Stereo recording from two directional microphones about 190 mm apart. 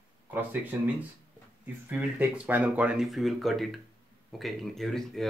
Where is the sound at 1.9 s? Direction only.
10° right (ahead or behind).